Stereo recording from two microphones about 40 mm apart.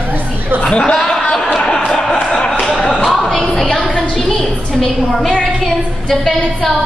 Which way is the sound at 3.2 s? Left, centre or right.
Centre.